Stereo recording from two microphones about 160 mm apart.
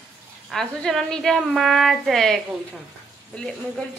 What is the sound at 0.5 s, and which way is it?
A woman's voice, centre (ahead or behind).